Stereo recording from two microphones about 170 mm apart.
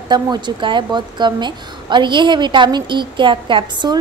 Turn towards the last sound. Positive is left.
turn(degrees=-25)  # may be behind; listen again after turning